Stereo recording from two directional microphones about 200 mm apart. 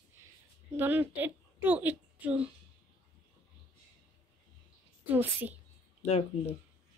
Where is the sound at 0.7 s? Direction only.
10° right (ahead or behind).